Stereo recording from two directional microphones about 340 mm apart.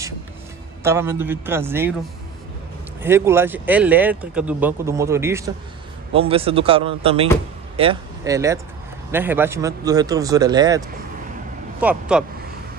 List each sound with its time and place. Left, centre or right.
0.8 s speech: centre
3.0 s speech: centre
11.8 s speech: centre